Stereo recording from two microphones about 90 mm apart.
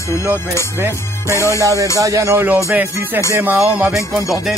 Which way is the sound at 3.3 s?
20° right (ahead or behind).